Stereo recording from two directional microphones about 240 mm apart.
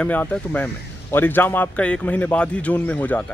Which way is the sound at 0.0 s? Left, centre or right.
Centre.